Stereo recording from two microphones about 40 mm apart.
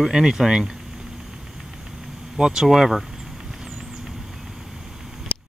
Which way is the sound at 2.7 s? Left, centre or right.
Centre.